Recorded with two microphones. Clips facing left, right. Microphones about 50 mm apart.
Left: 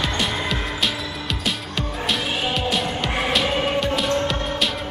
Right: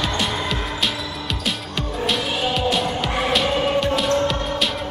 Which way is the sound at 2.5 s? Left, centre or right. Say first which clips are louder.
Right 2 dB; centre.